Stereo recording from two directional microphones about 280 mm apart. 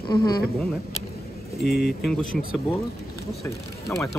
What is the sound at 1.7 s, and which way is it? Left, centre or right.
Speech, left.